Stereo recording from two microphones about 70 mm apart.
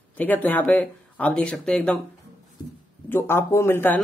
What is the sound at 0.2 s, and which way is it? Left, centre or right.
Speech, left.